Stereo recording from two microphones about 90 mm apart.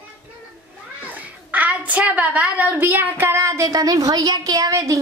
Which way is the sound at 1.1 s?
20° right (ahead or behind).